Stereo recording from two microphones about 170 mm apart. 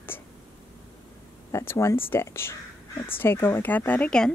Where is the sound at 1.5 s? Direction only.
15° left (ahead or behind).